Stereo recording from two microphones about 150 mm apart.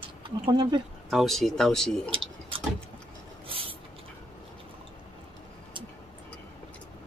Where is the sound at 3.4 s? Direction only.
35° right (ahead or behind).